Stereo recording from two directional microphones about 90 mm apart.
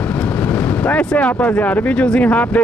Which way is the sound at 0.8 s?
15° left (ahead or behind).